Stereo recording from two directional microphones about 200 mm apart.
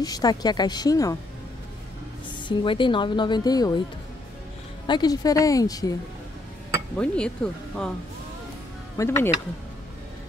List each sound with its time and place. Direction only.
0.0 s speech: 20° left (ahead or behind)
2.4 s speech: 25° left (ahead or behind)
4.8 s speech: 20° left (ahead or behind)
7.0 s speech: 5° left (ahead or behind)
8.9 s speech: 15° left (ahead or behind)